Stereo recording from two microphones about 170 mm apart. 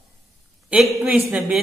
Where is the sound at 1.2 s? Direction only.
5° right (ahead or behind).